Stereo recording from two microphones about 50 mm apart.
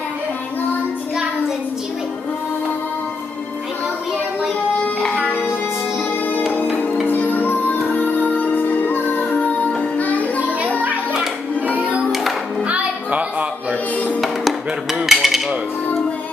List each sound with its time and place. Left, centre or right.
6.5 s music: left
11.7 s music: right
15.0 s a sound: centre